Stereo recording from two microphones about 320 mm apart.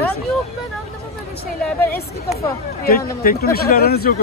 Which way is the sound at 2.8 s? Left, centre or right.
Left.